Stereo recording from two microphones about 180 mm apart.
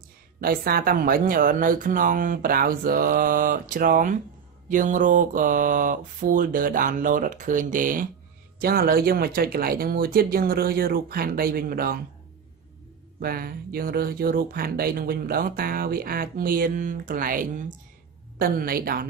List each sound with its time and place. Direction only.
0.4 s speech: 60° right (ahead or behind)
13.2 s speech: 55° right (ahead or behind)